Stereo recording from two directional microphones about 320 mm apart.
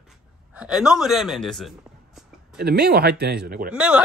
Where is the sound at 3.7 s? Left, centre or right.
Centre.